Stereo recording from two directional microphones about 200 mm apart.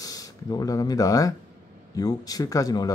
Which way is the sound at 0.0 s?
20° left (ahead or behind).